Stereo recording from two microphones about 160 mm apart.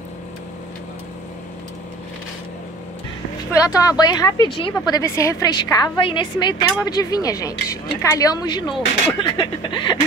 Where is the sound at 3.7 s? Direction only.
25° left (ahead or behind).